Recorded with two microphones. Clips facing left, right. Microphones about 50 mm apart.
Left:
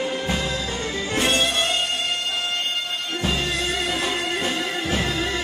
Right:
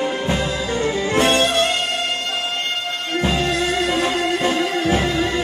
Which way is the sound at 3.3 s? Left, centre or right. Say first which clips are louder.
Right 4 dB; right.